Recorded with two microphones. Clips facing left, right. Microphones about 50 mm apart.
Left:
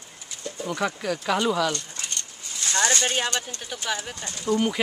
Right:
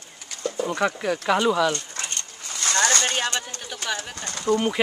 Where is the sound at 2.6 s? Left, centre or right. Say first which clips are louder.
Right 2 dB; right.